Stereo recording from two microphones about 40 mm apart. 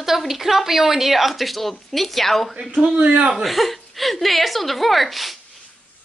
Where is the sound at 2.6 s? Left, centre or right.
Centre.